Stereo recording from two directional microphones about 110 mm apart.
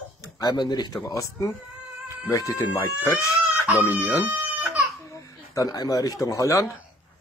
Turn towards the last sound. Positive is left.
turn(degrees=30)  # may be behind; listen again after turning